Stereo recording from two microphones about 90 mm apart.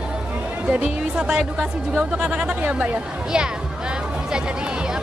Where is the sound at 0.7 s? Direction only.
10° right (ahead or behind).